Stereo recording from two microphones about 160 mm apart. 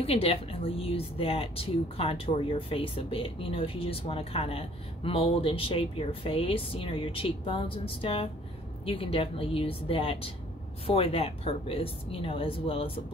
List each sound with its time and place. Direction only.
0.0 s speech: 40° left (ahead or behind)